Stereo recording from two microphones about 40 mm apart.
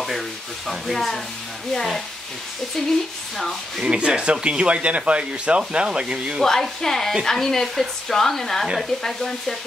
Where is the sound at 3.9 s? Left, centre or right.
Right.